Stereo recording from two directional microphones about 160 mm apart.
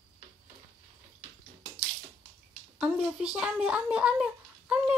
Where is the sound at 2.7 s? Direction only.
Centre (ahead or behind).